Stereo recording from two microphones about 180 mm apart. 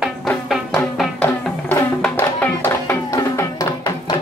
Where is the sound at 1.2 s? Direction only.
10° left (ahead or behind).